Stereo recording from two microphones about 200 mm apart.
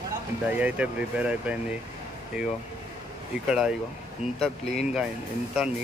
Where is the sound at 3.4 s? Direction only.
5° right (ahead or behind).